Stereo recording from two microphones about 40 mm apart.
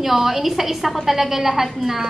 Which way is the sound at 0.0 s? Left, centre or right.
Centre.